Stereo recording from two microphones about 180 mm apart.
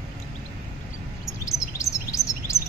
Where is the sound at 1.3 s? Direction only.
15° left (ahead or behind).